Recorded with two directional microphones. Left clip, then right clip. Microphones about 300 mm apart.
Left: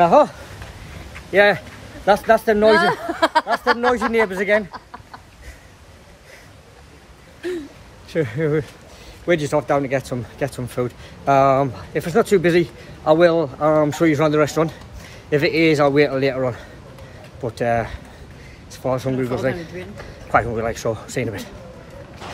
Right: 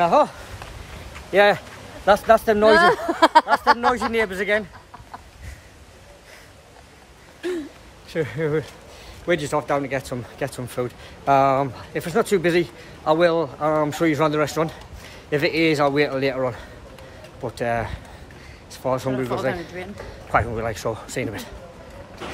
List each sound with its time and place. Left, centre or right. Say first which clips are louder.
0.0 s speech: left 4 dB; centre
2.6 s speech: even; right
3.9 s speech: left 4 dB; centre
8.1 s speech: left 3 dB; centre